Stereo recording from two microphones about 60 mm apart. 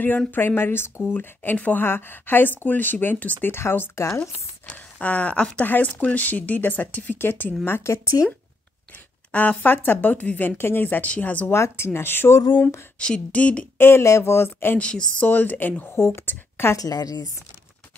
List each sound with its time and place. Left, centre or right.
0.3 s speech: left
4.6 s speech: left
7.6 s speech: left
9.3 s speech: left
11.5 s speech: left
13.0 s speech: centre
13.7 s speech: left
14.8 s speech: centre
15.2 s a woman's voice: left
16.7 s a woman's voice: left